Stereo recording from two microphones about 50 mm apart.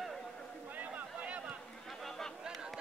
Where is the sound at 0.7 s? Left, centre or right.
Right.